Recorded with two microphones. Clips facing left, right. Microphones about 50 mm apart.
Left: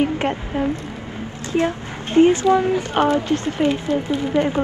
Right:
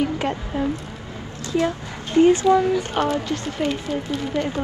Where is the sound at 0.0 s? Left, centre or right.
Left.